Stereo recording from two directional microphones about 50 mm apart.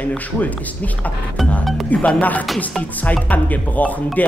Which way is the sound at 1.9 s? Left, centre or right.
Left.